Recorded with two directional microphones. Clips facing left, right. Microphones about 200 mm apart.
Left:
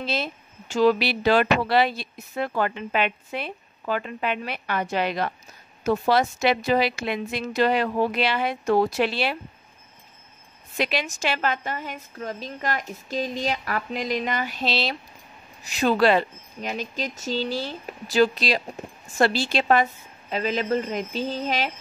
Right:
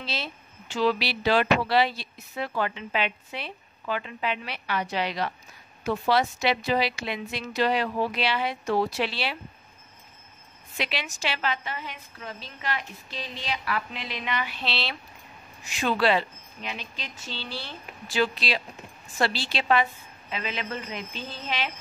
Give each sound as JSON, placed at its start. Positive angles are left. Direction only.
{"t": 0.0, "sound": "speech", "side_deg": 50}
{"t": 10.8, "sound": "a woman's voice", "side_deg": 45}